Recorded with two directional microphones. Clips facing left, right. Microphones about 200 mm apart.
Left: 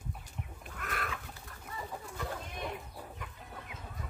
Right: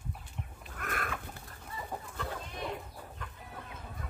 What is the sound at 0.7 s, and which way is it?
Chicken, 50° right (ahead or behind).